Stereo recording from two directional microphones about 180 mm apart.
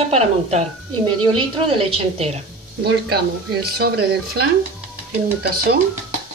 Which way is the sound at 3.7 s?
60° right (ahead or behind).